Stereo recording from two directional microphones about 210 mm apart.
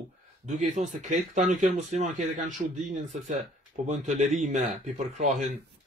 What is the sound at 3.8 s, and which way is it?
Speech, 35° right (ahead or behind).